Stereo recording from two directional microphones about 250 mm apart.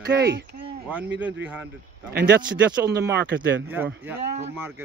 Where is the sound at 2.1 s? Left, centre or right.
Right.